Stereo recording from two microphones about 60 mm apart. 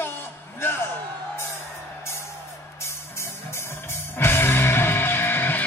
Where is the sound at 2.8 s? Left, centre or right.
Left.